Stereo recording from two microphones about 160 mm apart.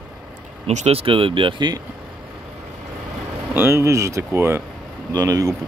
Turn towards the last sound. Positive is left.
turn(degrees=-20)  # may be behind; listen again after turning